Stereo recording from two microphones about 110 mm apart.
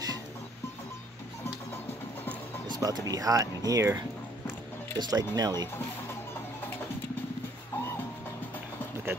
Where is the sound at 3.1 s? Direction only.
35° right (ahead or behind).